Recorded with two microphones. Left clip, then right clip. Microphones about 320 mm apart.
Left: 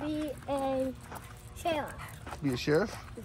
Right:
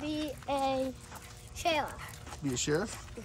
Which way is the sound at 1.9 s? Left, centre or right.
Centre.